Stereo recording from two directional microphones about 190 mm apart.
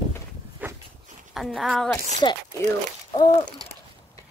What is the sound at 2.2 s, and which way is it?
Speech, 25° left (ahead or behind).